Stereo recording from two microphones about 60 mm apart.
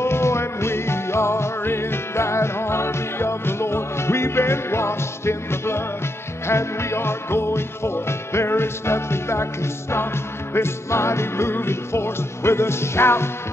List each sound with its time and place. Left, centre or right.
0.0 s music: left